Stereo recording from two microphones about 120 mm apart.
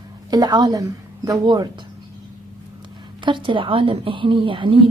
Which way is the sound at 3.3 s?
45° right (ahead or behind).